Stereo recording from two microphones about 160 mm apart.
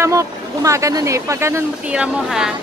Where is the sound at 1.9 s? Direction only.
5° right (ahead or behind).